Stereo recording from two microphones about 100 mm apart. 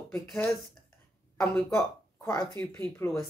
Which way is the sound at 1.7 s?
30° left (ahead or behind).